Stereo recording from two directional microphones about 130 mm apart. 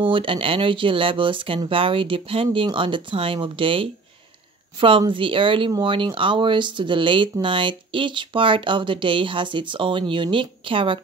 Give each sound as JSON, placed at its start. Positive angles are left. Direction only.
{"t": 0.0, "sound": "speech", "side_deg": -40}